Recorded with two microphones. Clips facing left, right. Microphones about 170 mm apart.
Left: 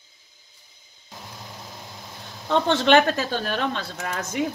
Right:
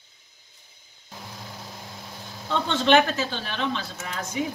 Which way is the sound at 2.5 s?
65° left (ahead or behind).